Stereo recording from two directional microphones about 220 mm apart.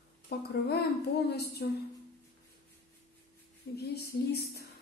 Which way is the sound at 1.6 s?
50° left (ahead or behind).